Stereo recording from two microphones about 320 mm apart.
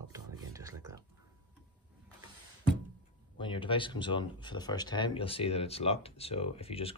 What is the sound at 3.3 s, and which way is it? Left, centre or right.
Speech, centre.